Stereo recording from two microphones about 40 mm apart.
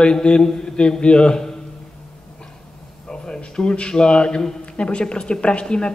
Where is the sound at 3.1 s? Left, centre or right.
Left.